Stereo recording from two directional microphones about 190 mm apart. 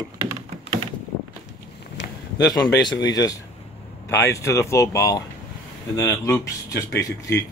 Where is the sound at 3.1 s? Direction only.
20° left (ahead or behind).